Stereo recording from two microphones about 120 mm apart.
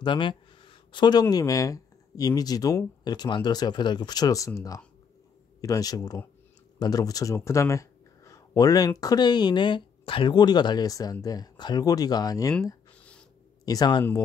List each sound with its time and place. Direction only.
0.0 s speech: 45° left (ahead or behind)
13.7 s speech: 35° left (ahead or behind)